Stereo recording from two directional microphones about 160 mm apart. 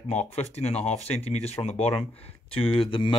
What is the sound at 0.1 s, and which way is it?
Speech, 45° left (ahead or behind).